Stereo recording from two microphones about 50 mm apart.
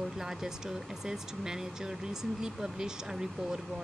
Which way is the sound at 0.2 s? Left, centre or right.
Centre.